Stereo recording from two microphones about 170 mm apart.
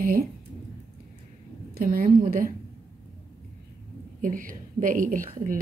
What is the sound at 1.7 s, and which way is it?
Speech, 55° right (ahead or behind).